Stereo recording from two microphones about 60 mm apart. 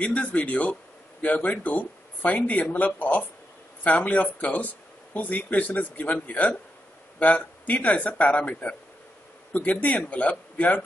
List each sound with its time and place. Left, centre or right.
0.0 s speech: left